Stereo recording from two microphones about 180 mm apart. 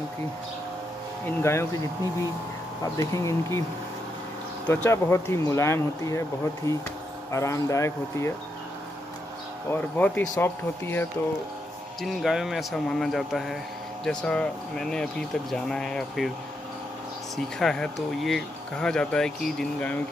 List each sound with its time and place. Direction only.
1.4 s speech: 15° left (ahead or behind)
2.8 s speech: 15° left (ahead or behind)
4.6 s speech: 10° left (ahead or behind)
9.7 s speech: 10° left (ahead or behind)
12.0 s speech: centre (ahead or behind)
17.6 s speech: centre (ahead or behind)